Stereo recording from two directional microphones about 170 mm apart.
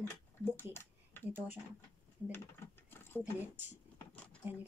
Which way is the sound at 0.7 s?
10° left (ahead or behind).